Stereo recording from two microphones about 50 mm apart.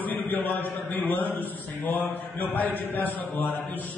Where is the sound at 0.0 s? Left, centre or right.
Left.